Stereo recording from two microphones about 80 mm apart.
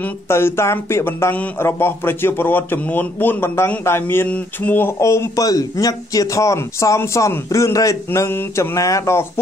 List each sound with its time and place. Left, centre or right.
0.3 s a man's voice: left
8.3 s a man's voice: left
8.7 s speech: left